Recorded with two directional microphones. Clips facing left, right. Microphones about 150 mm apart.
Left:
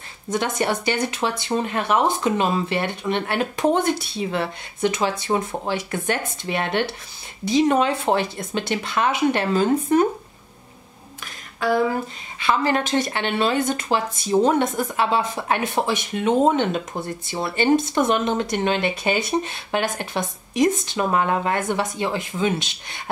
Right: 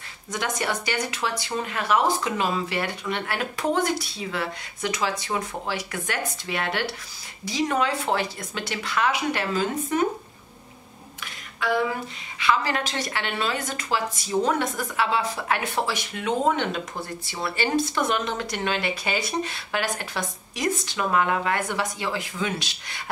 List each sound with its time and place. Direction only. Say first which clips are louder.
0.4 s speech: left 4 dB; 25° left (ahead or behind)
9.6 s speech: left 8 dB; 40° left (ahead or behind)
11.6 s speech: left 4 dB; 40° left (ahead or behind)
12.4 s speech: left 4 dB; 25° left (ahead or behind)